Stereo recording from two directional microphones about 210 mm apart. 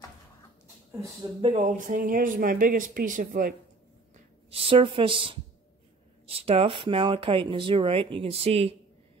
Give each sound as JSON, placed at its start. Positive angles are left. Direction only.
{"t": 1.4, "sound": "speech", "side_deg": -35}
{"t": 4.5, "sound": "a woman's voice", "side_deg": -30}